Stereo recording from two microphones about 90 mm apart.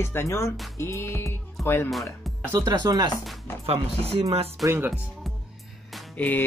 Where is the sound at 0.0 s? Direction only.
30° left (ahead or behind).